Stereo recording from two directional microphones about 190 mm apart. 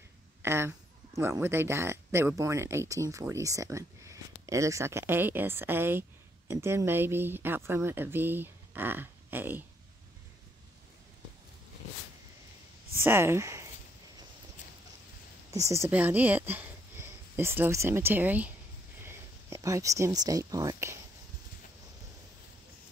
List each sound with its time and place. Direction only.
0.4 s speech: 15° right (ahead or behind)
12.9 s speech: 10° right (ahead or behind)
15.5 s speech: 15° right (ahead or behind)